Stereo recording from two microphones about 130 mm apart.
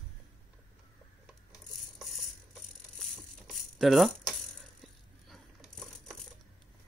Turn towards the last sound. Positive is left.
turn(degrees=-5)  # may be behind; listen again after turning